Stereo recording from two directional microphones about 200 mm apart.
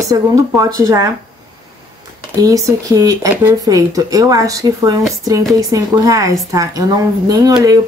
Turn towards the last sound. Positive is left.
turn(degrees=-20)  # may be behind; listen again after turning